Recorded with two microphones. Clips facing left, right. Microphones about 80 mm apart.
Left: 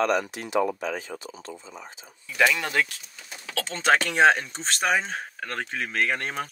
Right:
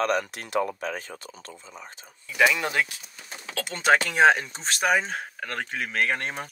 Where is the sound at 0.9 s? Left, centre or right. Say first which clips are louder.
Left 3 dB; right.